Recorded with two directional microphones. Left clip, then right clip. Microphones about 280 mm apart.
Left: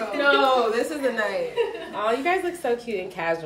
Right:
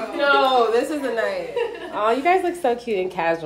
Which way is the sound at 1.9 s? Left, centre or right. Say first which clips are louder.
Right 5 dB; right.